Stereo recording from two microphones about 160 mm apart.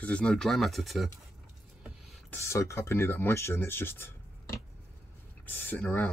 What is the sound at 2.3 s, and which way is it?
Speech, 15° left (ahead or behind).